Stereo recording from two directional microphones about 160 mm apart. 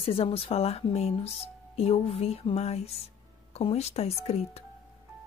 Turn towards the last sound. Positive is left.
turn(degrees=40)  # may be behind; listen again after turning